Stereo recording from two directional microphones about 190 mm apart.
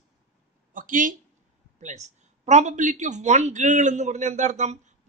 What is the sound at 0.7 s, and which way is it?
Speech, 45° right (ahead or behind).